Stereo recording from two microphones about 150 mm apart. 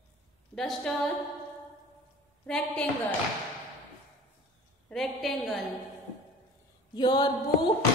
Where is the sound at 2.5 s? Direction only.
5° left (ahead or behind).